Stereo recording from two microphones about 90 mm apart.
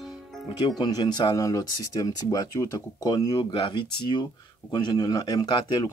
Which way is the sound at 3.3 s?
75° left (ahead or behind).